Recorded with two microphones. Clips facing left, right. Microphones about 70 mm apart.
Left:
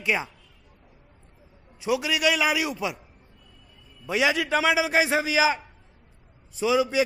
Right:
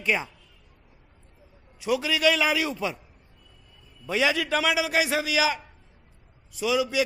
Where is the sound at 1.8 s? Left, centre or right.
Centre.